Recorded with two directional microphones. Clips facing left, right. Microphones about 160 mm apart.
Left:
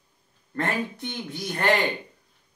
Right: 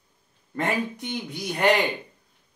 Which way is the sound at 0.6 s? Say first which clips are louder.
Right 1 dB; 15° right (ahead or behind).